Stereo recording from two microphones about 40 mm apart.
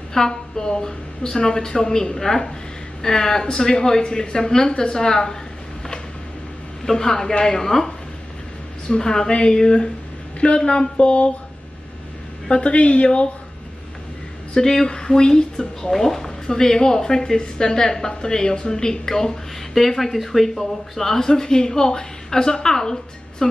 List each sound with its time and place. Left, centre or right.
0.1 s speech: centre
6.9 s speech: centre; by 11.3 s left
12.4 s a woman's voice: left
14.5 s speech: centre